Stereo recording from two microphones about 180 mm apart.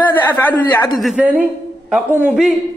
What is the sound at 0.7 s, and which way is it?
Speech, 25° left (ahead or behind).